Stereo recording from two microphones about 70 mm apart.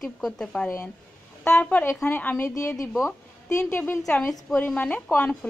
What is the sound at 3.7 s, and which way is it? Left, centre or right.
A woman's voice, left.